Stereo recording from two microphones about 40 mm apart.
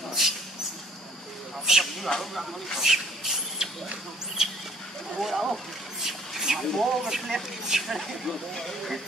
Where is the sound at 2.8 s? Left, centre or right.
Centre.